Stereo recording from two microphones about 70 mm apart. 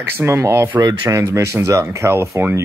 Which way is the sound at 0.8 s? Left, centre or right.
Right.